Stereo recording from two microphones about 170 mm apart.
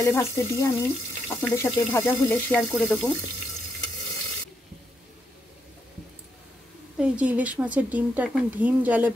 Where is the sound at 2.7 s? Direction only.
5° left (ahead or behind).